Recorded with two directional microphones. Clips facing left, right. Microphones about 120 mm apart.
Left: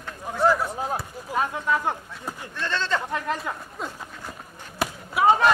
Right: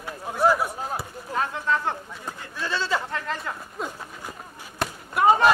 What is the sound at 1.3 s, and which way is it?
Speech, 10° left (ahead or behind).